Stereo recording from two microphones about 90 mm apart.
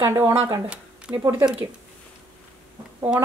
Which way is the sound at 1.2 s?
25° right (ahead or behind).